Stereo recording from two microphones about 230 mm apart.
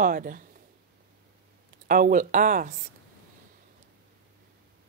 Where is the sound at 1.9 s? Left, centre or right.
Right.